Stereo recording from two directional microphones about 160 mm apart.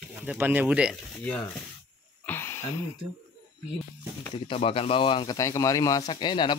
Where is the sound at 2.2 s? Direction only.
15° left (ahead or behind).